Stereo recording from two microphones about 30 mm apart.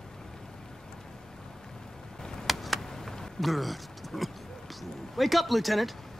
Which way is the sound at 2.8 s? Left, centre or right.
Centre.